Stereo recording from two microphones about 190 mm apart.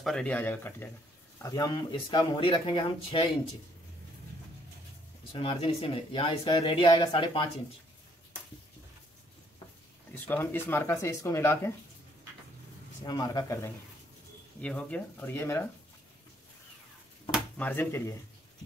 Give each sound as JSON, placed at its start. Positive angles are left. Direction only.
{"t": 0.0, "sound": "speech", "side_deg": 5}
{"t": 5.3, "sound": "speech", "side_deg": 30}
{"t": 10.1, "sound": "speech", "side_deg": 10}
{"t": 13.0, "sound": "speech", "side_deg": 20}
{"t": 14.6, "sound": "speech", "side_deg": 5}
{"t": 17.6, "sound": "speech", "side_deg": 10}